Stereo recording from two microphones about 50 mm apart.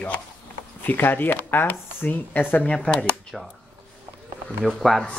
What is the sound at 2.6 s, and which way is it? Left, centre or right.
Speech, left.